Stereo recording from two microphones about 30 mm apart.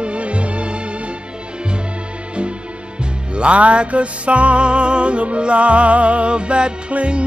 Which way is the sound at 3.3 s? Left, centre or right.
Right.